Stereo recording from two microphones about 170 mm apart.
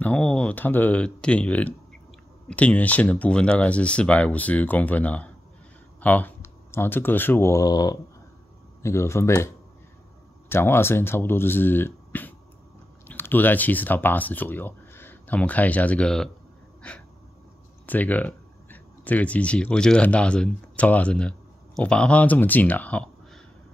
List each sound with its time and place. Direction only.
0.0 s speech: 5° left (ahead or behind)
10.5 s speech: 15° left (ahead or behind)
17.8 s speech: 10° left (ahead or behind)